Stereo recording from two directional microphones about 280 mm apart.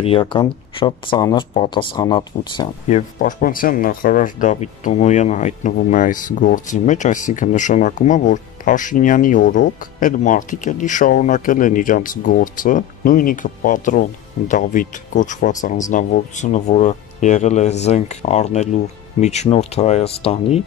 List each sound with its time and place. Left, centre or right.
0.0 s speech: centre
3.2 s speech: left